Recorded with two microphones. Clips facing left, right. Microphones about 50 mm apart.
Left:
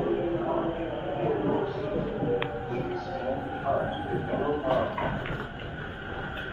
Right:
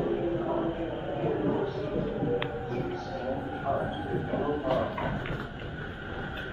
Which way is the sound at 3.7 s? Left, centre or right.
Centre.